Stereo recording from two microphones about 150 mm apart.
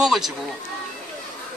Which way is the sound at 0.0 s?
Centre (ahead or behind).